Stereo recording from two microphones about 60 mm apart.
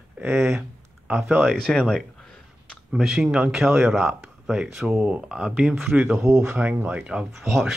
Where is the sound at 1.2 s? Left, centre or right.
Right.